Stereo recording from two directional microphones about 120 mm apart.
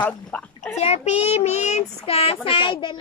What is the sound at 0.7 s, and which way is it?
Child singing, 65° left (ahead or behind).